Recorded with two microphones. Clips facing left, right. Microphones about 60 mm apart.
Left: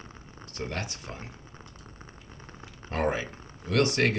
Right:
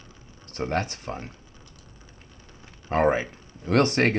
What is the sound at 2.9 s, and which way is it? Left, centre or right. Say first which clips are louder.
Speech: right 7 dB; right.